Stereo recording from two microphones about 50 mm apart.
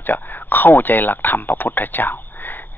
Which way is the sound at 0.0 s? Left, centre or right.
Left.